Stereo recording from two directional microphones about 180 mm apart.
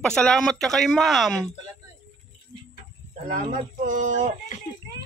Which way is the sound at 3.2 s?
45° right (ahead or behind).